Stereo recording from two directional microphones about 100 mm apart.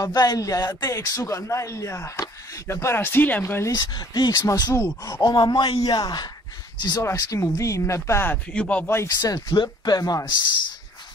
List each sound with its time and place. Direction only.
0.0 s a man's voice: 40° left (ahead or behind); by 3.4 s 20° left (ahead or behind)
3.4 s speech: 30° left (ahead or behind)
3.9 s speech: 45° left (ahead or behind)
4.6 s speech: 25° left (ahead or behind)
5.0 s speech: 40° left (ahead or behind); by 8.4 s 25° left (ahead or behind)
8.5 s speech: 10° left (ahead or behind)
8.9 s a man's voice: 35° left (ahead or behind)